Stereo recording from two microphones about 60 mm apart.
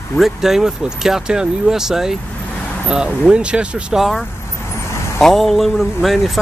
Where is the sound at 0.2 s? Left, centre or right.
Centre.